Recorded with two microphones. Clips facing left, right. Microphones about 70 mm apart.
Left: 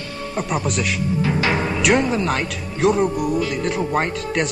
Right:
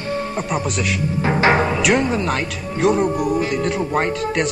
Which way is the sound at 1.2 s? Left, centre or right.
Right.